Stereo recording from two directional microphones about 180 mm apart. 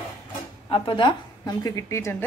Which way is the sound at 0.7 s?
30° left (ahead or behind).